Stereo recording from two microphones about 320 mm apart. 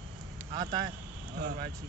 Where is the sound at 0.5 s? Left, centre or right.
Centre.